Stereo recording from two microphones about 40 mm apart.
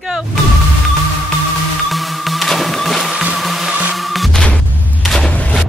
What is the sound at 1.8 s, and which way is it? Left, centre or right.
Music, centre.